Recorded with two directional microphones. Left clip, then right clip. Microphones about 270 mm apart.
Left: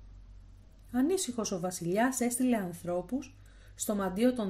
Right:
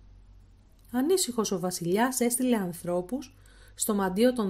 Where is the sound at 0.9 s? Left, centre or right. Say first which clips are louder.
Right 4 dB; right.